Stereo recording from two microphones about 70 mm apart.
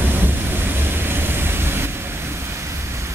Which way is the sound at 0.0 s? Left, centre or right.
Right.